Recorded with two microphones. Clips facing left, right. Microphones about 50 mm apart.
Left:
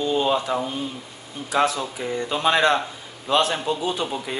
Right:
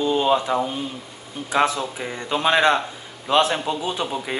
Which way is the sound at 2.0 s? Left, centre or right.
Right.